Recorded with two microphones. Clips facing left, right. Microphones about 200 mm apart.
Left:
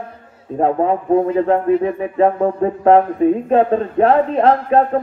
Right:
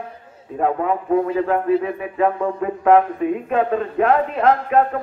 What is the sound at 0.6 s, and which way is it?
Speech, 30° left (ahead or behind).